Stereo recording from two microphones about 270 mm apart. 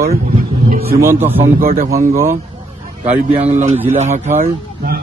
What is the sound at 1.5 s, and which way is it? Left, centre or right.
Speech, right.